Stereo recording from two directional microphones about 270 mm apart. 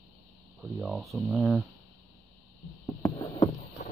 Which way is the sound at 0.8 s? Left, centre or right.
Centre.